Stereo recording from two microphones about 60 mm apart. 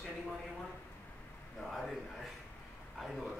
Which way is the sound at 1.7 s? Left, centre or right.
Centre.